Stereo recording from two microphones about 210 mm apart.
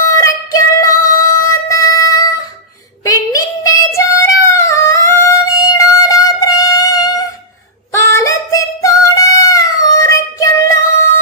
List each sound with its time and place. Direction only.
0.2 s music: 15° left (ahead or behind)
3.1 s child singing: 15° left (ahead or behind)
8.0 s singing: 15° left (ahead or behind)